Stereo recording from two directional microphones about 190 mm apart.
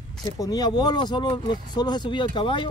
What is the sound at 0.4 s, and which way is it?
Speech, 20° left (ahead or behind).